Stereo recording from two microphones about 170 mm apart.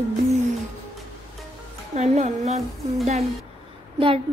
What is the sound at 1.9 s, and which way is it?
Child singing, 40° right (ahead or behind).